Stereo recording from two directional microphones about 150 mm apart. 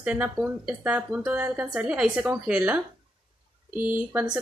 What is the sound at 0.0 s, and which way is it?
Speech, 10° right (ahead or behind).